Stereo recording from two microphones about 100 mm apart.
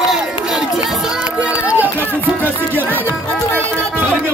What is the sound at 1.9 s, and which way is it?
Music, 15° left (ahead or behind).